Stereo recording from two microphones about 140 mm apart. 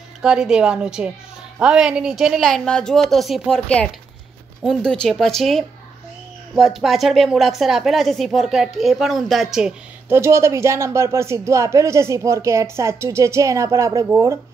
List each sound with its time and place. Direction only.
0.2 s a woman's voice: 5° right (ahead or behind)
10.0 s speech: 20° right (ahead or behind)